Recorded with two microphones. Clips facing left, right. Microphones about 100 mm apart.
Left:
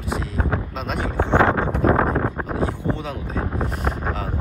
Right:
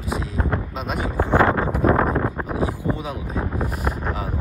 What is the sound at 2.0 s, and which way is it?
Wind noise, 10° left (ahead or behind).